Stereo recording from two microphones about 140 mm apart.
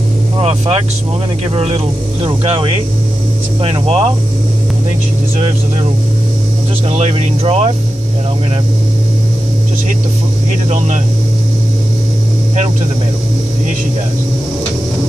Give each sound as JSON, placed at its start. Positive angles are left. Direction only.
{"t": 0.4, "sound": "speech", "side_deg": -45}
{"t": 6.9, "sound": "speech", "side_deg": -50}